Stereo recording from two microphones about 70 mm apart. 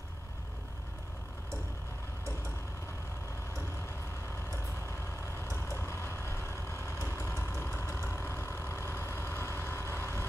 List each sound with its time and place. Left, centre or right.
5.4 s vehicle: left